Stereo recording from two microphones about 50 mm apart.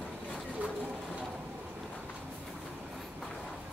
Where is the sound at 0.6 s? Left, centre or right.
Right.